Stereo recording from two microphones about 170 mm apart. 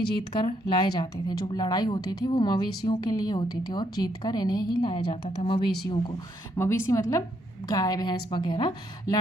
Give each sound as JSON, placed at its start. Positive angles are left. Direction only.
{"t": 0.3, "sound": "a woman's voice", "side_deg": 25}